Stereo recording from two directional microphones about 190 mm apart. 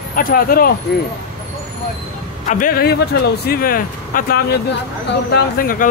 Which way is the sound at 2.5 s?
45° left (ahead or behind).